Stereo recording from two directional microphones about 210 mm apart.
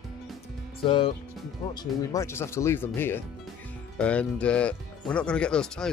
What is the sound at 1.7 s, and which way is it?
Speech, 15° left (ahead or behind).